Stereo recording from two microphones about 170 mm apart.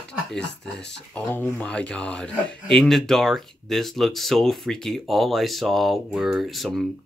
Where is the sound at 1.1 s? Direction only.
10° left (ahead or behind).